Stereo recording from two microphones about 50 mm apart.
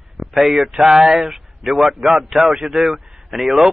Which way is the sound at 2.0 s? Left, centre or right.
Right.